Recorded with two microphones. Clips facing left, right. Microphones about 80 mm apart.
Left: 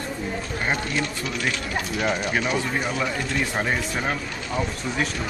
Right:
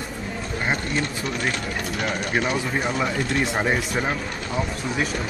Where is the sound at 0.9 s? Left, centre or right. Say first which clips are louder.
Right 1 dB; right.